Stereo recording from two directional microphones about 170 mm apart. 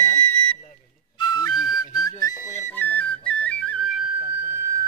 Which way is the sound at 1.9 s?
20° left (ahead or behind).